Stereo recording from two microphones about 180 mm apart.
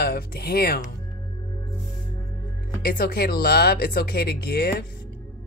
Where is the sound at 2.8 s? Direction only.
55° left (ahead or behind).